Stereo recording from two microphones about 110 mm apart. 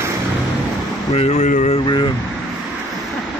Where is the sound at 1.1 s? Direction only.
80° left.